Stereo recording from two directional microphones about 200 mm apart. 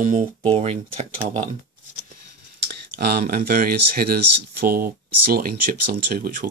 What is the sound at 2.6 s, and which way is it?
Speech, 55° right (ahead or behind).